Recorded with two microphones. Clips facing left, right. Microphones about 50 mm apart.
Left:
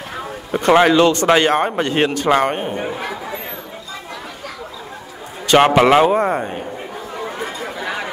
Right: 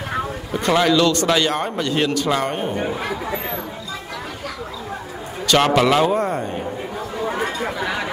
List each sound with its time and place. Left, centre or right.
0.5 s a man's voice: left
2.6 s speech: centre
5.5 s a man's voice: left
7.3 s chatter: right
7.8 s a sound: centre